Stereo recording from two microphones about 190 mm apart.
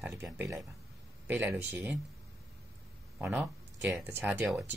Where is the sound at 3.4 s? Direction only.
5° right (ahead or behind).